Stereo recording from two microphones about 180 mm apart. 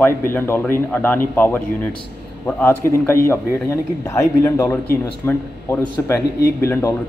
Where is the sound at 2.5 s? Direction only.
10° left (ahead or behind).